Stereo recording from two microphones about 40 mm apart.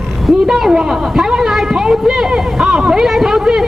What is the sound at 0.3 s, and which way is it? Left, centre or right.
A woman's voice, centre.